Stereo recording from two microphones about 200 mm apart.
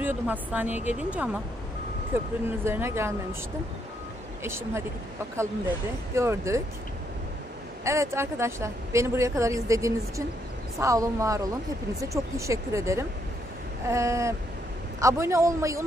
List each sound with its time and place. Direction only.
0.0 s a woman's voice: 10° right (ahead or behind)
4.4 s a woman's voice: 10° right (ahead or behind)
6.1 s a woman's voice: 15° right (ahead or behind)
7.8 s a woman's voice: 15° right (ahead or behind)